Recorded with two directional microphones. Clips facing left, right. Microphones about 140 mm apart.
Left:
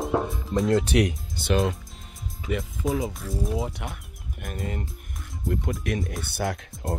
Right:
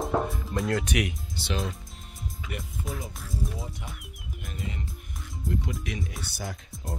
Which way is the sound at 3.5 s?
75° left (ahead or behind).